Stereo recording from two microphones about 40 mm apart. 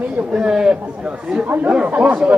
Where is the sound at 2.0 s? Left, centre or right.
Right.